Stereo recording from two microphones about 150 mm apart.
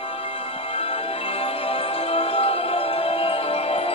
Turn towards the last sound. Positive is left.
turn(degrees=40)  # may be behind; listen again after turning